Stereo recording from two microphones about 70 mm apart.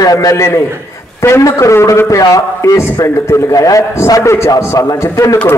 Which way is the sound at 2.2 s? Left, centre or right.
Left.